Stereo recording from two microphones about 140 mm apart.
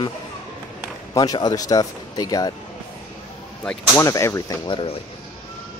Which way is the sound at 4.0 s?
20° left (ahead or behind).